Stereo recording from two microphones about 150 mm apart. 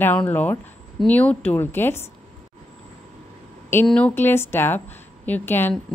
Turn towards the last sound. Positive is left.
turn(degrees=15)  # may be behind; listen again after turning